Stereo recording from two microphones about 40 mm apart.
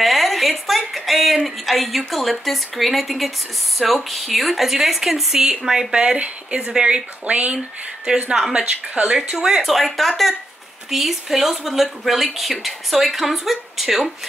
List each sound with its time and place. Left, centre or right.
0.0 s a woman's voice: centre
5.9 s speech: right
7.2 s speech: right
7.5 s speech: centre
9.6 s a woman's voice: centre